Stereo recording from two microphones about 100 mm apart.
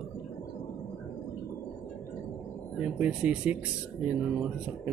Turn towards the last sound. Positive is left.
turn(degrees=-15)  # may be behind; listen again after turning